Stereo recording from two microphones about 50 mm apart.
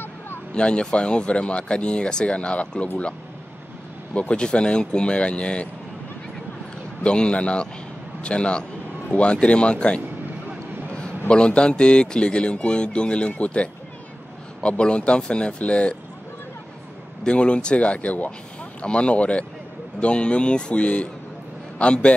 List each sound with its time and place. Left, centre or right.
0.6 s a man's voice: left
4.1 s a man's voice: left
7.0 s a man's voice: left
17.2 s a man's voice: left